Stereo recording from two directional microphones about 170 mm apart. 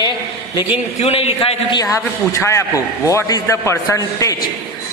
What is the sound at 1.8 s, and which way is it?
A man's voice, 20° left (ahead or behind).